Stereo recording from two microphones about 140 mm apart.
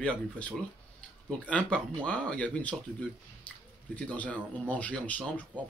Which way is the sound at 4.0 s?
10° left (ahead or behind).